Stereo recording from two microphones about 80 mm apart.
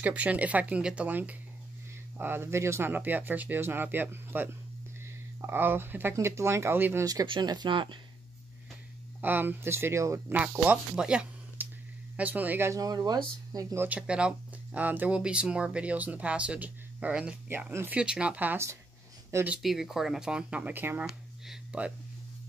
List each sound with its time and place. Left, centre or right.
0.0 s speech: centre
5.5 s speech: right
7.2 s speech: right
9.2 s speech: right
10.6 s speech: centre
11.6 s a sound: right
12.2 s speech: right
12.6 s speech: right
13.7 s speech: centre
19.6 s speech: centre
20.7 s speech: right
21.7 s speech: centre